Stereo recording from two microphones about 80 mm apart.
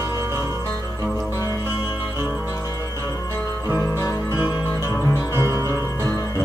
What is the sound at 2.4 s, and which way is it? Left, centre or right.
Music, left.